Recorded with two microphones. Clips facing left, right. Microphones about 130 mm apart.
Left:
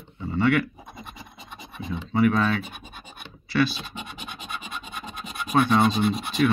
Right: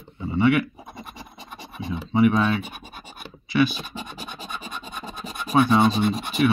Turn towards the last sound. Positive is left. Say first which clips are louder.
# right 1 dB
turn(degrees=-5)  # may be behind; listen again after turning